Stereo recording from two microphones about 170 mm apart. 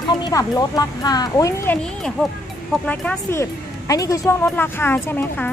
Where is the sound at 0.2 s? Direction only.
20° left (ahead or behind).